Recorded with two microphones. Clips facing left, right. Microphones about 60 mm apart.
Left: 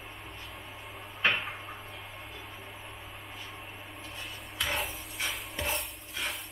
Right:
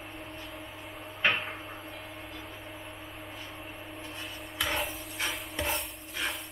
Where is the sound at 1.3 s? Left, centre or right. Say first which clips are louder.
Even; centre.